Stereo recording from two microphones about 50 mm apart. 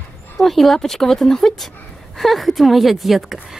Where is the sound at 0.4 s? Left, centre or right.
Centre.